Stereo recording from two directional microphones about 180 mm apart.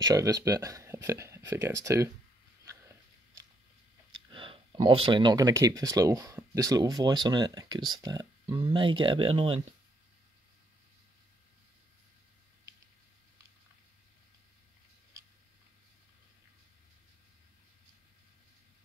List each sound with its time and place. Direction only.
0.0 s speech: 20° right (ahead or behind)
2.6 s biting: 15° right (ahead or behind)
4.1 s speech: 30° right (ahead or behind)